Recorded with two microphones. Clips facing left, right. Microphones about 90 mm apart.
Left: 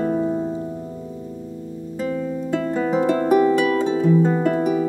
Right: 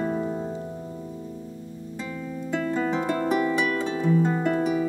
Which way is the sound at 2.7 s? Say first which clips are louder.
Left 7 dB; 10° left (ahead or behind).